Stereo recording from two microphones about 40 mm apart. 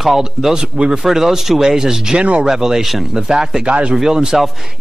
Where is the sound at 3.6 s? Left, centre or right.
Right.